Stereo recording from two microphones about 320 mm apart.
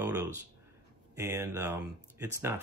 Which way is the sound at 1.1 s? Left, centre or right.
Centre.